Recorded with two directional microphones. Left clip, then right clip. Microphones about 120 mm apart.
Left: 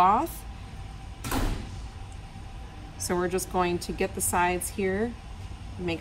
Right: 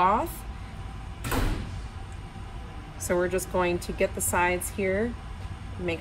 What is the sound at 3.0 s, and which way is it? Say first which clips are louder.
Speech: right 2 dB; 30° left (ahead or behind).